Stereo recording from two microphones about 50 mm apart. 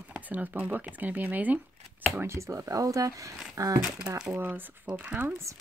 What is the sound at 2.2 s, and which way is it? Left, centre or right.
Speech, right.